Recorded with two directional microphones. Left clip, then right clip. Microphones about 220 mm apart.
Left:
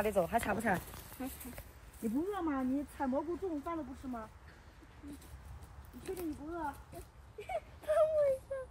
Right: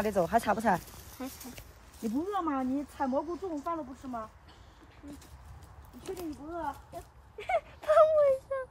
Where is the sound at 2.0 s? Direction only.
5° right (ahead or behind).